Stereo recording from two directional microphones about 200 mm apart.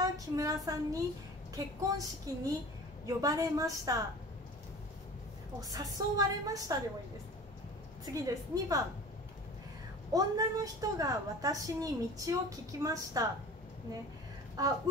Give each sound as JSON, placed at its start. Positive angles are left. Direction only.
{"t": 0.0, "sound": "a woman's voice", "side_deg": -15}
{"t": 1.8, "sound": "a woman's voice", "side_deg": -15}
{"t": 5.6, "sound": "a woman's voice", "side_deg": -20}
{"t": 8.0, "sound": "a woman's voice", "side_deg": -15}
{"t": 10.1, "sound": "a woman's voice", "side_deg": -20}
{"t": 14.6, "sound": "a woman's voice", "side_deg": -20}